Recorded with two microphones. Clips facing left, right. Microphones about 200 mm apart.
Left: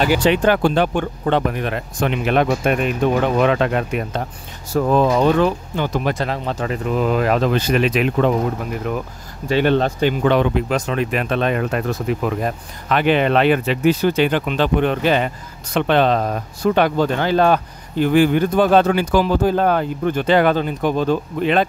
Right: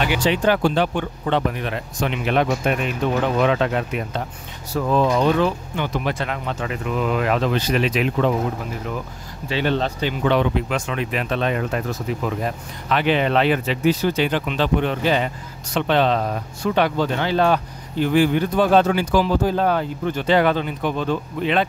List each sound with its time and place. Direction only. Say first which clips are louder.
0.2 s speech: left 3 dB; 55° left (ahead or behind)
9.5 s speech: left 5 dB; 50° left (ahead or behind)